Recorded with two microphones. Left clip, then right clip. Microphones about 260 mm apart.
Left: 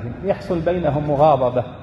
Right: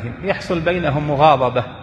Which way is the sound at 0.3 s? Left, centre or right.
Right.